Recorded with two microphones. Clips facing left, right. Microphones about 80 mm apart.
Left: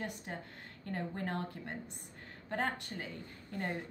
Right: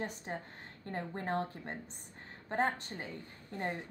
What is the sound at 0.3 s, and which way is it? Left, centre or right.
A woman's voice, right.